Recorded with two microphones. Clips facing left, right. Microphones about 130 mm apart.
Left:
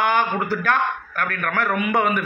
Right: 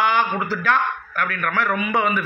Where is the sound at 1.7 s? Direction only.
55° left (ahead or behind).